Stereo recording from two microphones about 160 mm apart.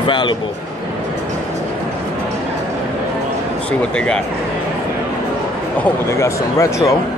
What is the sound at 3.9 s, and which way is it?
Speech, 5° left (ahead or behind).